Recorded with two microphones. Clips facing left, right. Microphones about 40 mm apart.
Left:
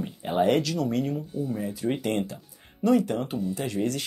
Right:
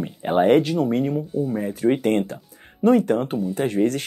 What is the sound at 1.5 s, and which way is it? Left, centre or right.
Speech, right.